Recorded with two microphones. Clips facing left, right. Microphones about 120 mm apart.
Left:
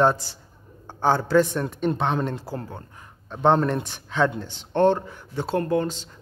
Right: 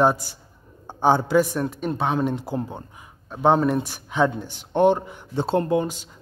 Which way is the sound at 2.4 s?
20° right (ahead or behind).